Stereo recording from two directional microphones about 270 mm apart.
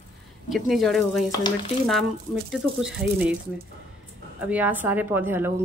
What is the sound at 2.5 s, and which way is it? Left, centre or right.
Speech, centre.